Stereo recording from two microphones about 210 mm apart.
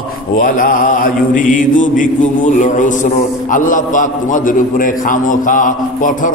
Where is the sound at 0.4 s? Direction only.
40° left (ahead or behind).